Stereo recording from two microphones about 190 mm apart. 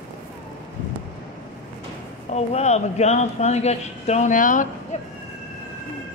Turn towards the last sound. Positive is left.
turn(degrees=40)  # may be behind; listen again after turning